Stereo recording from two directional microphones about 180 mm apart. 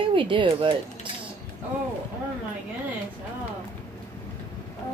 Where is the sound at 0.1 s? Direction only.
25° right (ahead or behind).